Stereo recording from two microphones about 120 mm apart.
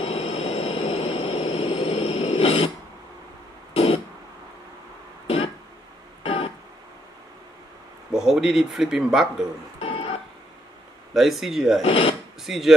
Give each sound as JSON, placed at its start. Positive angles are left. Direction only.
{"t": 0.0, "sound": "vehicle", "side_deg": 50}
{"t": 3.7, "sound": "a sound", "side_deg": 55}
{"t": 5.2, "sound": "throat clearing", "side_deg": 50}
{"t": 6.2, "sound": "keyboard", "side_deg": 50}
{"t": 8.1, "sound": "a man's voice", "side_deg": -5}
{"t": 9.8, "sound": "music", "side_deg": 50}
{"t": 11.1, "sound": "a man's voice", "side_deg": 0}
{"t": 11.8, "sound": "speech", "side_deg": 50}
{"t": 12.4, "sound": "a man's voice", "side_deg": 0}